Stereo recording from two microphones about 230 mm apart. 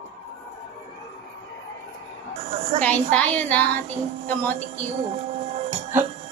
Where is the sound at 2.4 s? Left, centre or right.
Right.